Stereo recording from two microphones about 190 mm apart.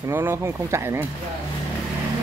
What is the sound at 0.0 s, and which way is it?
Speech, 10° right (ahead or behind).